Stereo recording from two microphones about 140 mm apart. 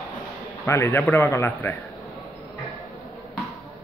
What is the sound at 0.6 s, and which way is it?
A man's voice, 15° left (ahead or behind).